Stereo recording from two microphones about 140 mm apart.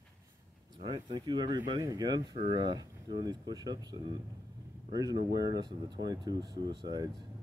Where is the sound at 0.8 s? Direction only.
35° right (ahead or behind).